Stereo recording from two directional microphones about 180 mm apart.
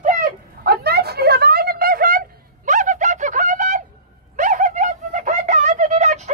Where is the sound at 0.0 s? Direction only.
55° right (ahead or behind).